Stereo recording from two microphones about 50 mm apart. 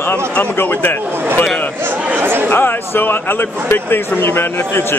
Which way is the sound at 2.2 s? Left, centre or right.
Right.